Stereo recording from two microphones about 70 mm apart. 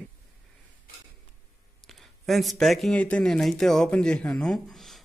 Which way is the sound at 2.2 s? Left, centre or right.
Centre.